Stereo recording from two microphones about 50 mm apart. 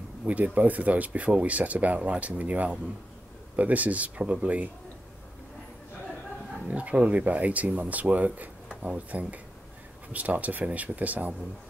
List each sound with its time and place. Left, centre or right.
0.2 s speech: right
6.7 s speech: right